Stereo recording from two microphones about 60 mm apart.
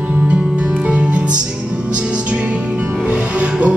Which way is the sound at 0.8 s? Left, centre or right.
Right.